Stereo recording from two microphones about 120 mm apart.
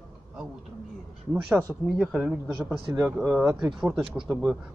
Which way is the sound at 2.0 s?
5° right (ahead or behind).